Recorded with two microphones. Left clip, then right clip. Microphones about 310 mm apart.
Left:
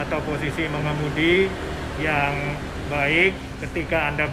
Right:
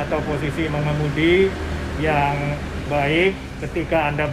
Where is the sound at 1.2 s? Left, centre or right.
Centre.